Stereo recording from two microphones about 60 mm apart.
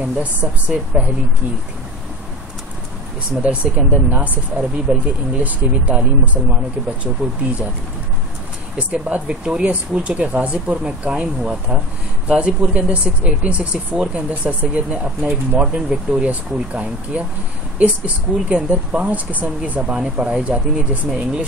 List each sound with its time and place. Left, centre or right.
0.2 s a woman's voice: right
3.4 s a woman's voice: right
4.9 s a woman's voice: centre
8.7 s a woman's voice: centre